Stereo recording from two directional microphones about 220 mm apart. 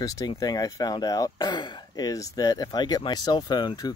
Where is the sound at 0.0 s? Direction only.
15° left (ahead or behind).